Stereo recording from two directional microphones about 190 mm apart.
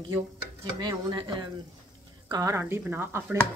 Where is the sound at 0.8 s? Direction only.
25° right (ahead or behind).